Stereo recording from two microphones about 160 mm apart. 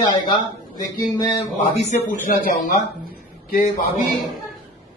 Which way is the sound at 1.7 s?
45° left (ahead or behind).